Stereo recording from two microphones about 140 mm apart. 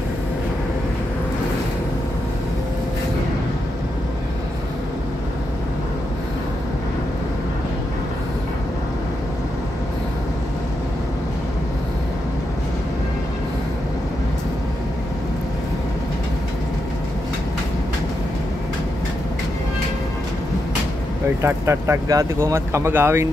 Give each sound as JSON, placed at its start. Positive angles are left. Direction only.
{"t": 21.4, "sound": "speech", "side_deg": -20}